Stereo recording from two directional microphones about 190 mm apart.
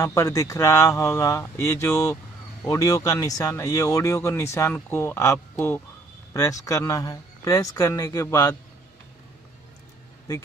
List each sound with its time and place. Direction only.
0.0 s speech: 15° left (ahead or behind)